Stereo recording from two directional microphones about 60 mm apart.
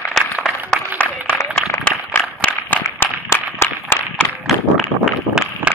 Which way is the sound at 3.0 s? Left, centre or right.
Left.